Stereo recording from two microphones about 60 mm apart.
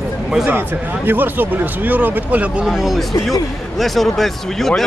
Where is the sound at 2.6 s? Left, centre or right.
Centre.